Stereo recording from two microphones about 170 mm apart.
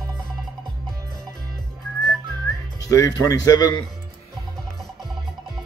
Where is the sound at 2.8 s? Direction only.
20° left (ahead or behind).